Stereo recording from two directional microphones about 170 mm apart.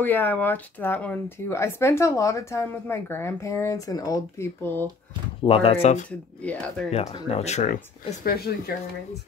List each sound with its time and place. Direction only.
0.0 s speech: 10° left (ahead or behind)
5.4 s speech: 35° left (ahead or behind)
6.0 s speech: 10° left (ahead or behind)
6.9 s speech: 40° left (ahead or behind); by 8.7 s 65° left (ahead or behind)